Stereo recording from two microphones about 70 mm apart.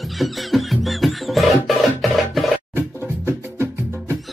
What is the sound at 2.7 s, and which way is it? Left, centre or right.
Music, right.